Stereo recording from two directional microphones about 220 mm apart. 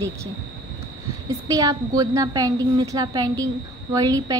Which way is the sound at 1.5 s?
15° right (ahead or behind).